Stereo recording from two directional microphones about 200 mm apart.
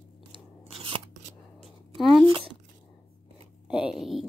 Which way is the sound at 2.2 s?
25° right (ahead or behind).